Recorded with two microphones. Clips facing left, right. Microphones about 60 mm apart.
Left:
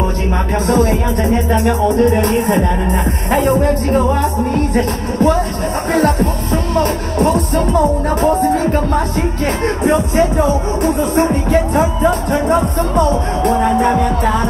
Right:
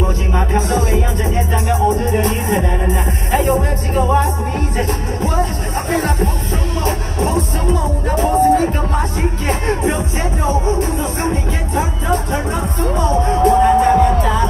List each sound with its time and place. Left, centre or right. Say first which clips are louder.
0.3 s speech: left 2 dB; left
9.5 s speech: left 3 dB; left